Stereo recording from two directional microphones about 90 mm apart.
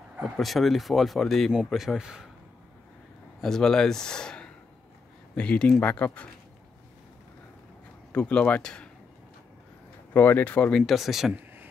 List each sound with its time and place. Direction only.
0.2 s speech: centre (ahead or behind)
3.3 s speech: 5° left (ahead or behind)
8.1 s speech: 15° left (ahead or behind)
10.1 s speech: 20° left (ahead or behind)
10.8 s speech: centre (ahead or behind)